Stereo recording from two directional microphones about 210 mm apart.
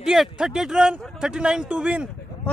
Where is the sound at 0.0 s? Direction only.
5° right (ahead or behind).